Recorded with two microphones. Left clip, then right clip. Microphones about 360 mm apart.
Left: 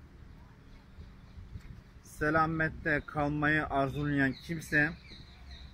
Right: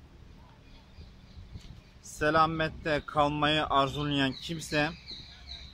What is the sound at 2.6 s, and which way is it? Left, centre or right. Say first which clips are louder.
Speech: right 1 dB; right.